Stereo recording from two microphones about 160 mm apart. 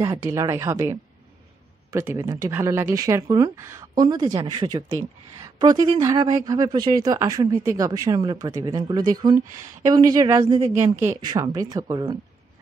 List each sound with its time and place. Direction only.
0.0 s speech: 20° right (ahead or behind)